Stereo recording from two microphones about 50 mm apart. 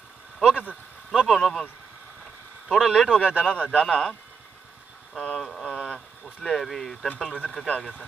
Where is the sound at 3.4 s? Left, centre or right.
Centre.